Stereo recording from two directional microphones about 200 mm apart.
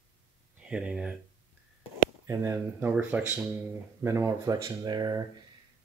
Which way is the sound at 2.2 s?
15° right (ahead or behind).